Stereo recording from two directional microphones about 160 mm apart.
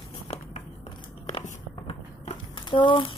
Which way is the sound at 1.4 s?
50° left (ahead or behind).